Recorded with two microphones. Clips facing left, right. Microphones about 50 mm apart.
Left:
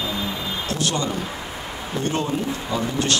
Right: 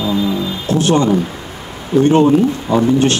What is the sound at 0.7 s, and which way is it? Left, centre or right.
Speech, right.